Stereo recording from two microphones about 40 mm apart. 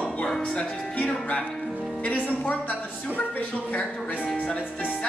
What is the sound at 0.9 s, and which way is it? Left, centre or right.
A woman's voice, left.